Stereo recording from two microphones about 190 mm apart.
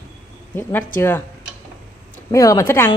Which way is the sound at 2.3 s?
15° left (ahead or behind).